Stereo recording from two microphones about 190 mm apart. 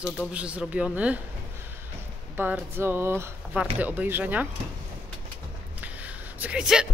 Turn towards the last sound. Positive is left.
turn(degrees=-5)  # may be behind; listen again after turning